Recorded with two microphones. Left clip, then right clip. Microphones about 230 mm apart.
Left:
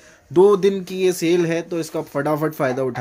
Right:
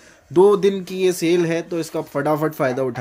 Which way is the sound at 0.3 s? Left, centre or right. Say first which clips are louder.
Even; centre.